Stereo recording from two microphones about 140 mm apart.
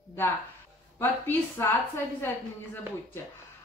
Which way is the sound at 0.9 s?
15° left (ahead or behind).